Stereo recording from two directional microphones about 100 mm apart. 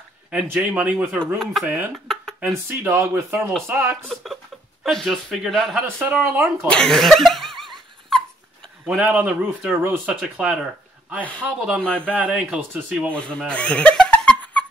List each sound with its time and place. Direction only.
0.3 s speech: 15° right (ahead or behind)
1.2 s speech: centre (ahead or behind)
2.1 s a sound: 5° left (ahead or behind)
2.4 s speech: 20° right (ahead or behind)
4.1 s speech: centre (ahead or behind)
5.9 s speech: 20° right (ahead or behind)
6.7 s speech: 5° left (ahead or behind)
8.8 s speech: 15° right (ahead or behind)
13.1 s speech: 10° left (ahead or behind)
13.5 s laughter: 10° left (ahead or behind)